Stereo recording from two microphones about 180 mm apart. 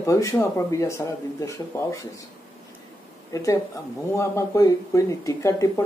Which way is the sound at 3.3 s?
20° left (ahead or behind).